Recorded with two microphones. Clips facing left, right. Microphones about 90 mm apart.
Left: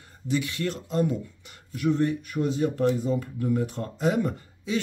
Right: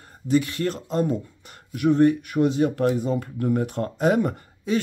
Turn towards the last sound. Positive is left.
turn(degrees=-50)  # may be behind; listen again after turning